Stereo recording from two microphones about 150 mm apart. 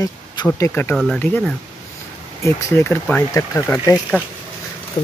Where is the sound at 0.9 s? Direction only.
Centre (ahead or behind).